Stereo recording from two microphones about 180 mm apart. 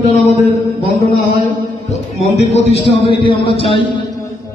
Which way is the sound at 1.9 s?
35° left (ahead or behind).